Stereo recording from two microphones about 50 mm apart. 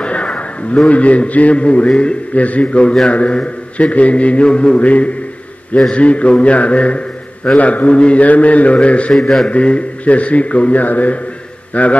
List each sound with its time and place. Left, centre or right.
0.0 s a sound: left
0.8 s a man's voice: left
5.8 s a man's voice: centre